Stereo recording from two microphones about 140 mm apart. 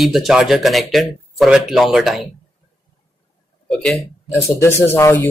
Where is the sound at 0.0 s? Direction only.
Centre (ahead or behind).